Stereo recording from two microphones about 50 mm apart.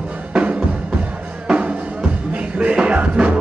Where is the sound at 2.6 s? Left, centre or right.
Right.